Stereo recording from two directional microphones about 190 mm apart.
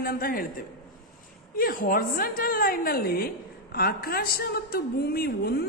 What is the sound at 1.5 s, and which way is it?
A man's voice, 50° left (ahead or behind).